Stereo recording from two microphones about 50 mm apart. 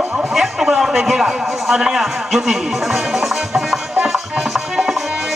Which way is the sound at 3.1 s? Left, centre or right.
Centre.